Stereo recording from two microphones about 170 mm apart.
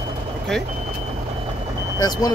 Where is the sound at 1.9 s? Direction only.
20° left (ahead or behind).